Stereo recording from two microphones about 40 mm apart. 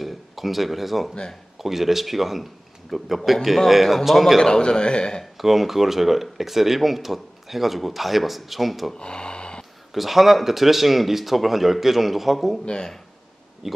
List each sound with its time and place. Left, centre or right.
0.0 s speech: centre
4.4 s a man's voice: centre
5.2 s speech: centre
8.9 s gasp: left
9.9 s speech: centre
12.6 s a man's voice: centre
13.6 s speech: centre